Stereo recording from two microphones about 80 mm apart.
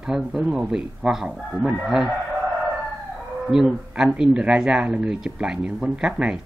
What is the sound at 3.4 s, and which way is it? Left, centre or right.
Speech, centre.